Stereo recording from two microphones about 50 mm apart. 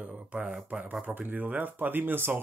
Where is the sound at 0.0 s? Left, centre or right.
Right.